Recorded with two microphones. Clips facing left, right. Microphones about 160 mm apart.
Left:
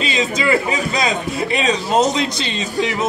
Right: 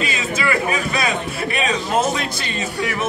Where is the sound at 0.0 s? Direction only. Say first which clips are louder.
Left 3 dB; 20° left (ahead or behind).